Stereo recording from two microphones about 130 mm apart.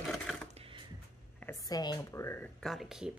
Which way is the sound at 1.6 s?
30° left (ahead or behind).